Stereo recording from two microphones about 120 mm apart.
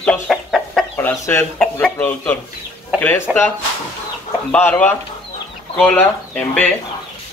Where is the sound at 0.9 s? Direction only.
20° left (ahead or behind).